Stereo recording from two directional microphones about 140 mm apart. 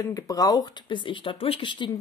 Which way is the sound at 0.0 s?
25° left (ahead or behind).